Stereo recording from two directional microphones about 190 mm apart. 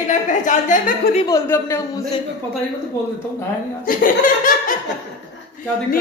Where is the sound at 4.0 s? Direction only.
45° left (ahead or behind).